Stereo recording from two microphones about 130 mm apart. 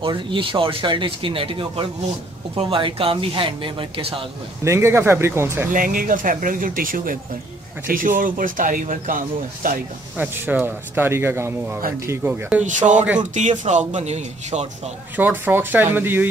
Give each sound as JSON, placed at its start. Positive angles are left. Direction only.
{"t": 0.0, "sound": "speech", "side_deg": -40}
{"t": 4.6, "sound": "speech", "side_deg": -20}
{"t": 5.7, "sound": "speech", "side_deg": -90}
{"t": 10.1, "sound": "speech", "side_deg": -10}
{"t": 12.6, "sound": "speech", "side_deg": -75}
{"t": 15.1, "sound": "speech", "side_deg": -15}